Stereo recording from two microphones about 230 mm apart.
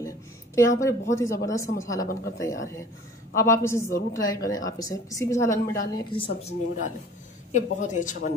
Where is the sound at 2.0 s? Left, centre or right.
Left.